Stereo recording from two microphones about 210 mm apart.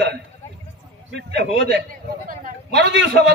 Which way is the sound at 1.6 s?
45° right (ahead or behind).